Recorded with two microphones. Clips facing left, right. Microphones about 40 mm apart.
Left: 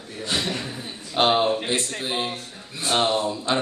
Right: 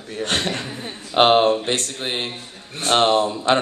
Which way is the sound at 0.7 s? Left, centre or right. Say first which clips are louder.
Right 6 dB; right.